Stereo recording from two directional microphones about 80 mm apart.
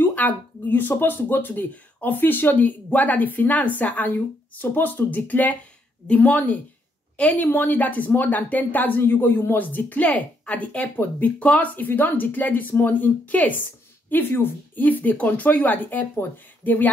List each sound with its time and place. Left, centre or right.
0.0 s a woman's voice: centre